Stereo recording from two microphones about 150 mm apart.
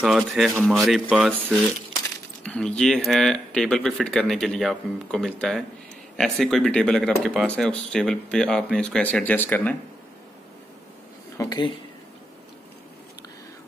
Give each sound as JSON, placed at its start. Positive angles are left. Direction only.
{"t": 0.0, "sound": "speech", "side_deg": 0}
{"t": 2.4, "sound": "speech", "side_deg": 5}
{"t": 11.3, "sound": "speech", "side_deg": 25}